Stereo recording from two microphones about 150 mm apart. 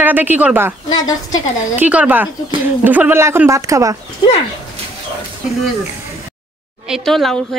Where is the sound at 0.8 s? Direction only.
25° left (ahead or behind).